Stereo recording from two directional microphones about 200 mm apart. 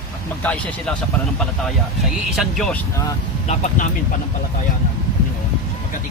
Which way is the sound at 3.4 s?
40° left (ahead or behind).